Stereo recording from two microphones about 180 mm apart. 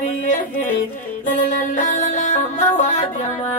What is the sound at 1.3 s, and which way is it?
Music, 45° left (ahead or behind).